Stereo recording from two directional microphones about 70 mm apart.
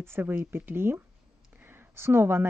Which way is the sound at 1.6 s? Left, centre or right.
Right.